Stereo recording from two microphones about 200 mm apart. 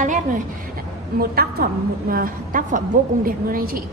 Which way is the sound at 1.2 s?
50° right (ahead or behind).